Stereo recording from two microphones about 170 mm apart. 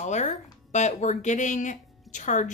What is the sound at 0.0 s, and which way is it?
Speech, 45° left (ahead or behind).